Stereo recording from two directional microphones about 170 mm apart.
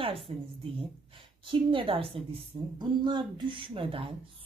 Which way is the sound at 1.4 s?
30° right (ahead or behind).